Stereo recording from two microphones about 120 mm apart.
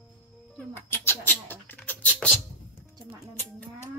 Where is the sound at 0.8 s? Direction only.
20° left (ahead or behind).